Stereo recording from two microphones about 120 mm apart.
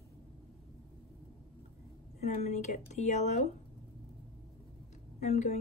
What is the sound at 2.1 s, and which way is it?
A woman's voice, 70° left (ahead or behind).